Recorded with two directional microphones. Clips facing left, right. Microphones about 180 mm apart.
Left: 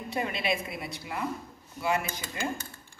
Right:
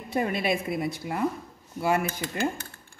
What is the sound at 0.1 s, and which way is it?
A woman's voice, 50° right (ahead or behind).